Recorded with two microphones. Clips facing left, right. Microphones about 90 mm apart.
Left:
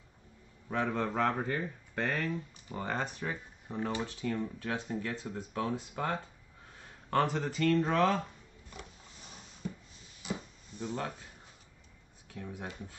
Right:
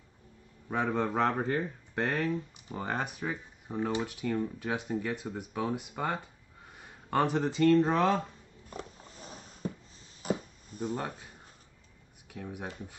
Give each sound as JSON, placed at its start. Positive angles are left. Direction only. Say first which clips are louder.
{"t": 0.7, "sound": "speech", "louder": "right 2 dB", "side_deg": -20}
{"t": 8.6, "sound": "a sound", "louder": "right 7 dB", "side_deg": -40}
{"t": 12.4, "sound": "speech", "louder": "right 2 dB", "side_deg": -20}